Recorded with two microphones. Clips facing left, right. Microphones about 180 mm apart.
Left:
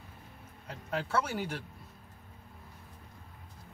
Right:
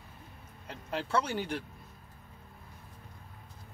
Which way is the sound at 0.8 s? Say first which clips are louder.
Right 1 dB; 5° left (ahead or behind).